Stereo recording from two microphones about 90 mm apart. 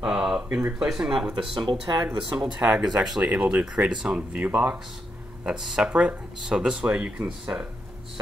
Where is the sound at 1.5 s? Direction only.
55° right (ahead or behind).